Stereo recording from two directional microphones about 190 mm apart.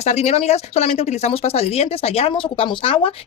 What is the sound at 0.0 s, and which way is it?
Speech, 35° left (ahead or behind).